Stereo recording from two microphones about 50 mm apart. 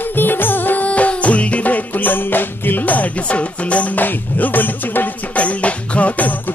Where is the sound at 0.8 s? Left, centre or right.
Left.